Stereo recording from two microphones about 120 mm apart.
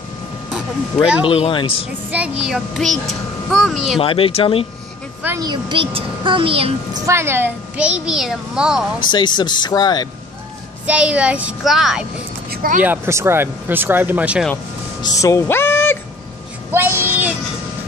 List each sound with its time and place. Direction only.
1.2 s speech: 45° left (ahead or behind)
2.0 s a child's voice: 10° right (ahead or behind)
4.0 s speech: 50° left (ahead or behind)
5.4 s a woman's voice: 40° right (ahead or behind)
7.1 s a child's voice: 20° right (ahead or behind); by 8.8 s 5° right (ahead or behind)
9.1 s speech: 40° left (ahead or behind)
10.9 s a child's voice: 10° right (ahead or behind)
12.8 s a child's voice: 20° right (ahead or behind)
15.0 s a sound: 30° left (ahead or behind)
16.7 s a sound: 20° right (ahead or behind)